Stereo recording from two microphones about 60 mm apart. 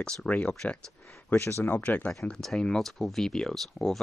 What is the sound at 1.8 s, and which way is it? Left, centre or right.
Speech, left.